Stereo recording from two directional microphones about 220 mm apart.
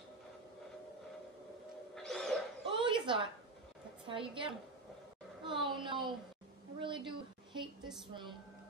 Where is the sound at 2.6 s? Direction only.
20° right (ahead or behind).